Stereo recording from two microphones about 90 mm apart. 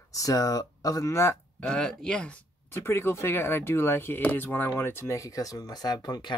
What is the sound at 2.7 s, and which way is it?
Speech, 30° left (ahead or behind).